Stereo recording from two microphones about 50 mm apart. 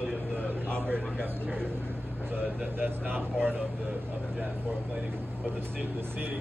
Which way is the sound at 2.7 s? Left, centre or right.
Right.